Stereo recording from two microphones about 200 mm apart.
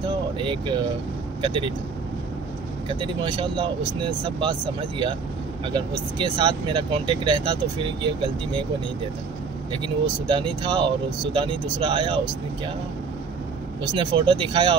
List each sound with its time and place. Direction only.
0.4 s speech: 25° right (ahead or behind)
2.9 s speech: 25° right (ahead or behind)
10.2 s speech: 25° right (ahead or behind)
13.9 s speech: 25° right (ahead or behind)